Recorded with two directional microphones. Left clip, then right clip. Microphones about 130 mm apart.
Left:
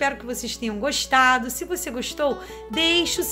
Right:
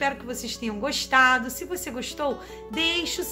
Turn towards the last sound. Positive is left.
turn(degrees=35)  # may be behind; listen again after turning